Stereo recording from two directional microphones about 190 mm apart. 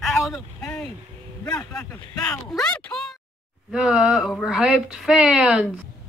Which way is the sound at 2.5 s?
5° left (ahead or behind).